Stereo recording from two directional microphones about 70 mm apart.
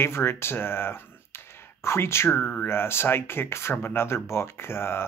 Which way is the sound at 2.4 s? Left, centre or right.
Left.